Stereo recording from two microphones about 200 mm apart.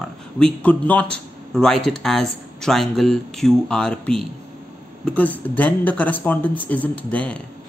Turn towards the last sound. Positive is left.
turn(degrees=5)  # may be behind; listen again after turning